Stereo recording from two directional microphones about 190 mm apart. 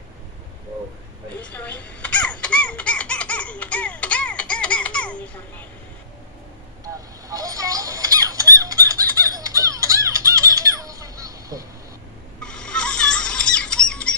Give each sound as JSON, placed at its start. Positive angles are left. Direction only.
{"t": 1.4, "sound": "chicken", "side_deg": 5}
{"t": 6.8, "sound": "fowl", "side_deg": -15}
{"t": 12.4, "sound": "squeal", "side_deg": 5}